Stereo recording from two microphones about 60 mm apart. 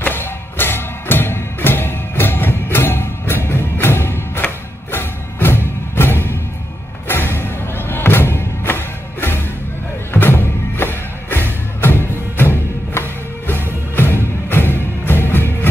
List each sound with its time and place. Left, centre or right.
0.0 s music: left